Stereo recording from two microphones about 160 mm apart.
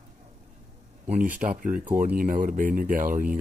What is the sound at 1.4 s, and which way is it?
Speech, 60° right (ahead or behind).